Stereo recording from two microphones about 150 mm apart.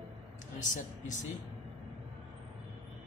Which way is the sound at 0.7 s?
55° left (ahead or behind).